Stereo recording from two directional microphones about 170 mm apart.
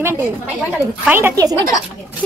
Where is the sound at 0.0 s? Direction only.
15° right (ahead or behind).